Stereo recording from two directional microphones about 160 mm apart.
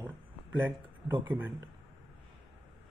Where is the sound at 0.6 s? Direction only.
10° right (ahead or behind).